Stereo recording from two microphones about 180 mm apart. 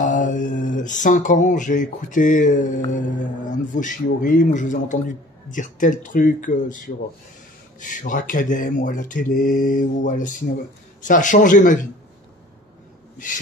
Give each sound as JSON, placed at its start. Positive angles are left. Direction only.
{"t": 0.0, "sound": "mantra", "side_deg": 45}
{"t": 3.2, "sound": "speech", "side_deg": 45}
{"t": 7.8, "sound": "speech", "side_deg": 45}